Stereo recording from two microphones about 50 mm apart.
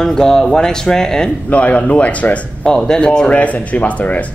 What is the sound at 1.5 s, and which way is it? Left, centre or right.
Speech, left.